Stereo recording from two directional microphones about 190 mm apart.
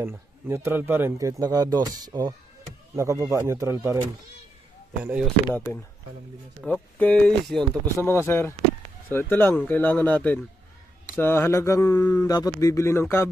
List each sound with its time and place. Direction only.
0.0 s speech: 15° right (ahead or behind)
5.0 s speech: 5° right (ahead or behind)
5.5 s speech: 10° left (ahead or behind)